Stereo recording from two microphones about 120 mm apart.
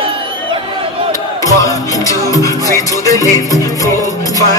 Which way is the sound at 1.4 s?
30° left (ahead or behind).